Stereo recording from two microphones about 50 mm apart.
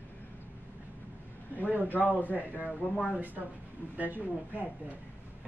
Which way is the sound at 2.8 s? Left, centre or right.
Left.